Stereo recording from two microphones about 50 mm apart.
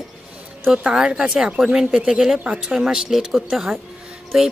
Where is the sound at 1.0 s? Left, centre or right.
Centre.